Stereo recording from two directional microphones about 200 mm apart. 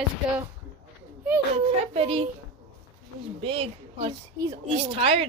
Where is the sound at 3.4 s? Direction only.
30° right (ahead or behind).